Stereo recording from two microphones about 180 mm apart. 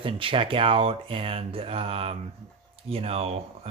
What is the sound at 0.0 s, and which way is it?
Speech, 30° right (ahead or behind).